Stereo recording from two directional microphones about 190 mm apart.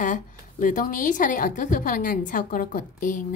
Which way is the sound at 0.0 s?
45° left (ahead or behind).